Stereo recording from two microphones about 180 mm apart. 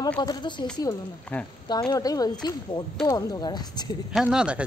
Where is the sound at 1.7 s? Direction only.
20° left (ahead or behind).